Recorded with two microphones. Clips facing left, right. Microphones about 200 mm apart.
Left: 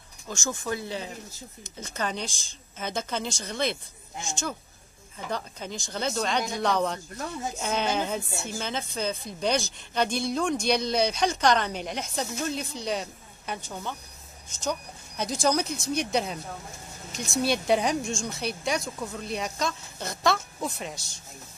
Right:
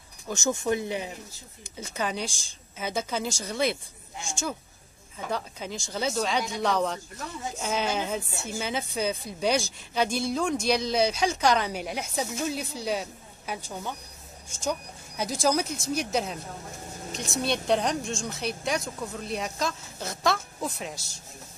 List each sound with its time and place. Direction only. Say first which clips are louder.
0.3 s speech: right 5 dB; 20° right (ahead or behind)
5.3 s speech: right 1 dB; 5° right (ahead or behind)